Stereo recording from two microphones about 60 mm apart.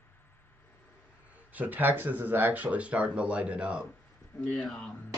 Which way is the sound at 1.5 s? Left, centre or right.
Right.